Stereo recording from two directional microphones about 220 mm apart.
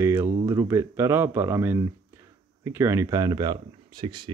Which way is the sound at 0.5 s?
15° right (ahead or behind).